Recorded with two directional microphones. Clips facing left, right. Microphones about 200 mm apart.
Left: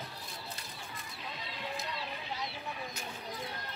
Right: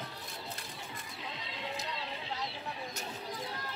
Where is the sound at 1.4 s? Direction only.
20° right (ahead or behind).